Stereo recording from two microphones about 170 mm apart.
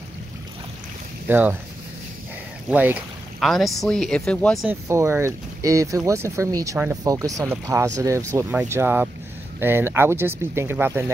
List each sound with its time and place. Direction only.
1.2 s speech: 10° right (ahead or behind)
2.7 s boat: 10° right (ahead or behind)
3.4 s speech: centre (ahead or behind)
4.6 s speech: 15° right (ahead or behind)